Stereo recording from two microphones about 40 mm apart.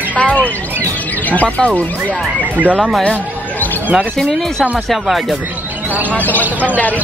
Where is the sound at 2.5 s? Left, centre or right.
Right.